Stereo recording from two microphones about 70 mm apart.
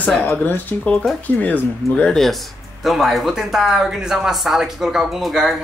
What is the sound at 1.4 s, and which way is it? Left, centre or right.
Speech, left.